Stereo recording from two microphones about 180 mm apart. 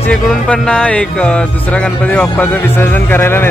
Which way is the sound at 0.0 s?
5° left (ahead or behind).